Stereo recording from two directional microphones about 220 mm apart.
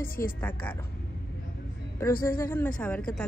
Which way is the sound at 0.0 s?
40° left (ahead or behind).